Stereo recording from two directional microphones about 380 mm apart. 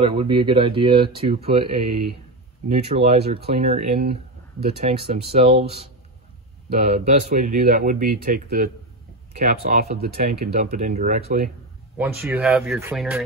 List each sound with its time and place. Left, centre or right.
0.0 s speech: centre
1.9 s speech: right
2.7 s speech: centre
7.2 s speech: right
12.0 s speech: centre